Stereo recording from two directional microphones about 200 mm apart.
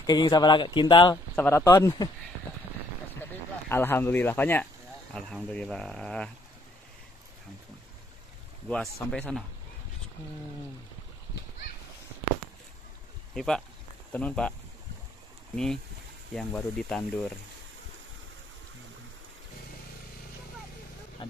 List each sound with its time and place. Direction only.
0.0 s speech: 20° left (ahead or behind)
1.3 s speech: 10° left (ahead or behind)
3.2 s speech: 10° left (ahead or behind)
8.6 s speech: 5° left (ahead or behind)
13.3 s speech: centre (ahead or behind)
15.5 s speech: 5° left (ahead or behind)
21.2 s vehicle: 25° left (ahead or behind)